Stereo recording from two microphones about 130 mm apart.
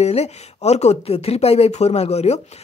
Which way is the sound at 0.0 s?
55° left (ahead or behind).